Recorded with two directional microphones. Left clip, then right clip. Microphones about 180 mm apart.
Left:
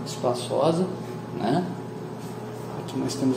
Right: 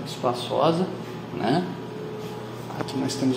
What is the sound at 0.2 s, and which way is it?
Speech, centre (ahead or behind).